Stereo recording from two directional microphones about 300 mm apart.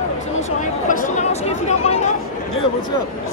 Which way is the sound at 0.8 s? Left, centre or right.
Left.